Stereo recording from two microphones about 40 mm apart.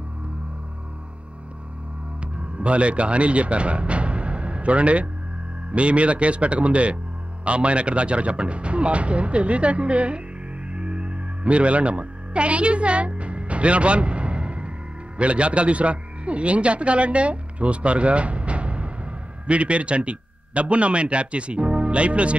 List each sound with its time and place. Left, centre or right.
2.3 s speech: right
10.7 s music: right
15.1 s a man's voice: right